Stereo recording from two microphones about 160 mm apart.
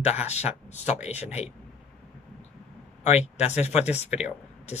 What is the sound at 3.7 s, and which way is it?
Speech, 10° right (ahead or behind).